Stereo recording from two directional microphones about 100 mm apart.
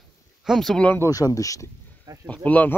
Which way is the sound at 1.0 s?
35° left (ahead or behind).